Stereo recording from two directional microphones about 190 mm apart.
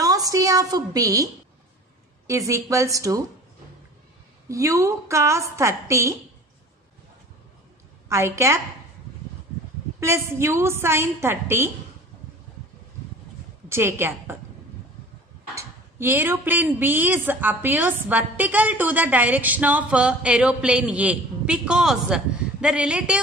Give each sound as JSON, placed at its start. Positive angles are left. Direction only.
{"t": 0.0, "sound": "a sound", "side_deg": -20}
{"t": 2.2, "sound": "speech", "side_deg": -15}
{"t": 4.5, "sound": "speech", "side_deg": -15}
{"t": 8.1, "sound": "speech", "side_deg": -15}
{"t": 9.9, "sound": "speech", "side_deg": -15}
{"t": 13.7, "sound": "speech", "side_deg": -15}
{"t": 15.5, "sound": "speech", "side_deg": -10}